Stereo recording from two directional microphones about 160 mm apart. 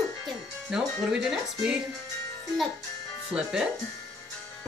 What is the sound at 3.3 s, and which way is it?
Speech, 5° right (ahead or behind).